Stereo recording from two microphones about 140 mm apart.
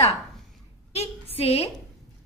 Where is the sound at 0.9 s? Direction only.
45° left (ahead or behind).